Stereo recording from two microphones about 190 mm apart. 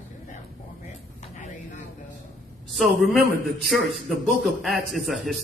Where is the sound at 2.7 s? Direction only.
Centre (ahead or behind).